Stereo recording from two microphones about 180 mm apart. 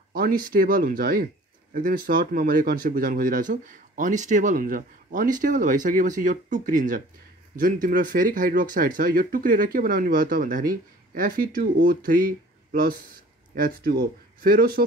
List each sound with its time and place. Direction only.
0.1 s speech: 55° right (ahead or behind)